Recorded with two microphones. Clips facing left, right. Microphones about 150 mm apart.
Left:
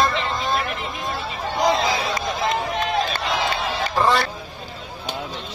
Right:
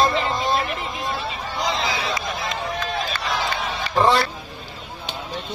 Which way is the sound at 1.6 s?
50° left (ahead or behind).